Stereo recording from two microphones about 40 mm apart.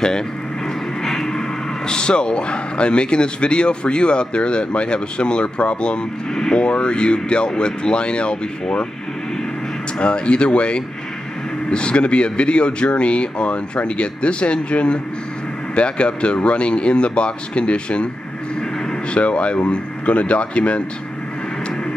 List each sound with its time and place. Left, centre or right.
1.0 s a sound: centre
1.9 s a man's voice: left
9.9 s a man's voice: left
19.1 s a man's voice: left